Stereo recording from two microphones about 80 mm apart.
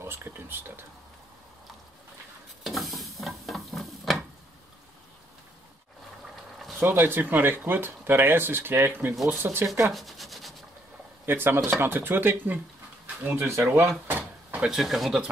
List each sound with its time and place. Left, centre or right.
0.0 s speech: right
2.6 s stir: centre
6.8 s speech: right
9.1 s speech: centre
9.4 s speech: right
9.9 s rub: centre
11.4 s speech: right
13.0 s pigeon: right
13.4 s speech: right
14.7 s speech: centre